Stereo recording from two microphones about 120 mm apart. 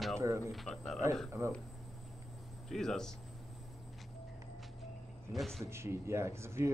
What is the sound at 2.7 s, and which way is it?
Speech, 5° left (ahead or behind).